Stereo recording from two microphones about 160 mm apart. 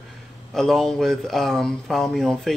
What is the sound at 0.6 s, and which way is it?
Speech, 5° left (ahead or behind).